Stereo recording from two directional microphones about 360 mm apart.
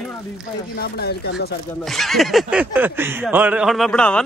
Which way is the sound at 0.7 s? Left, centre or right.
Left.